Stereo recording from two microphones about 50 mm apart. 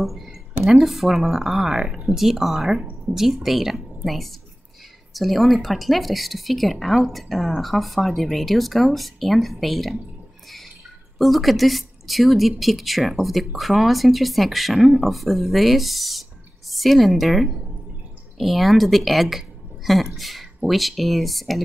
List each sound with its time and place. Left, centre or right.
0.0 s speech: centre
11.1 s speech: centre